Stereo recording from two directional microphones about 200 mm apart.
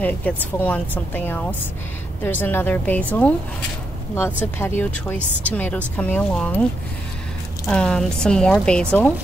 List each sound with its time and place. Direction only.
0.0 s speech: 10° left (ahead or behind)
7.6 s a woman's voice: 5° left (ahead or behind)